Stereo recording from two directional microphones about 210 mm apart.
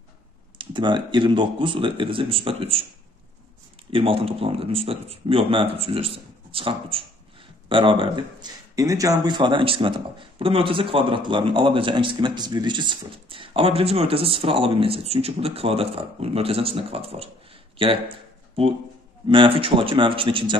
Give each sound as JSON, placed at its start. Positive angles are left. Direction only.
{"t": 0.6, "sound": "speech", "side_deg": -20}
{"t": 3.9, "sound": "speech", "side_deg": -25}